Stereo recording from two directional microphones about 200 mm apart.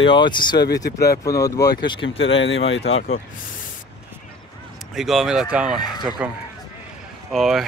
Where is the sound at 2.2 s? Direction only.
70° left (ahead or behind).